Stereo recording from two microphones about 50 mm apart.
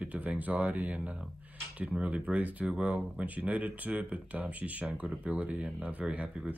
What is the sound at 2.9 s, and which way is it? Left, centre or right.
Speech, right.